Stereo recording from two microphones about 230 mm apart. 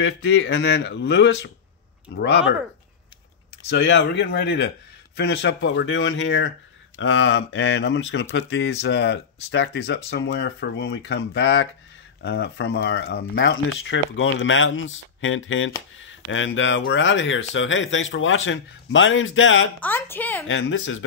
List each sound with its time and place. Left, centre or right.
0.0 s speech: left
3.6 s speech: left
19.8 s a woman's voice: centre
20.4 s speech: left